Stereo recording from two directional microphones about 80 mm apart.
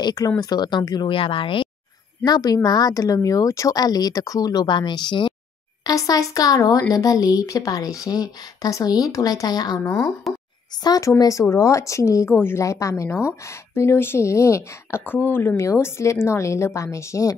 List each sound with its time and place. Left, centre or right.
0.0 s speech: left
2.2 s speech: left
4.7 s speech: left
5.9 s speech: left
10.3 s a sound: centre
11.0 s a woman's voice: left
12.4 s speech: left
12.6 s a woman's voice: left
15.5 s a woman's voice: left